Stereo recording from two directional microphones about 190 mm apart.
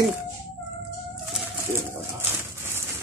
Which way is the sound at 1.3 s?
10° right (ahead or behind).